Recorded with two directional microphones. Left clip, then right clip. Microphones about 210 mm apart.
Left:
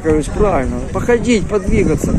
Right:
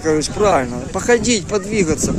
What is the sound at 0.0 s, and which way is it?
Speech, 15° right (ahead or behind).